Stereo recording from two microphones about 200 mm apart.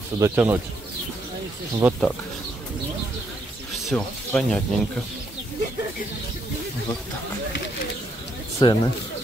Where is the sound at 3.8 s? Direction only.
5° left (ahead or behind).